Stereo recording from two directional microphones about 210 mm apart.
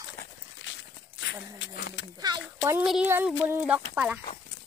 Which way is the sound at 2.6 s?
5° right (ahead or behind).